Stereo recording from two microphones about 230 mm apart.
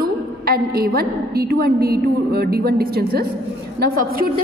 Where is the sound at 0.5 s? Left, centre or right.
Right.